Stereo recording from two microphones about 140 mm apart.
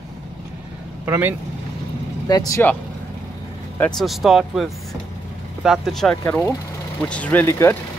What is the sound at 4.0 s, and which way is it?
Speech, centre (ahead or behind).